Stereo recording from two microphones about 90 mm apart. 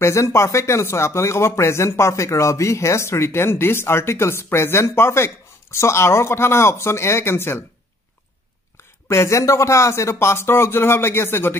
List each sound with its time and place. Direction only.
0.0 s speech: 30° left (ahead or behind)
9.1 s speech: 30° left (ahead or behind)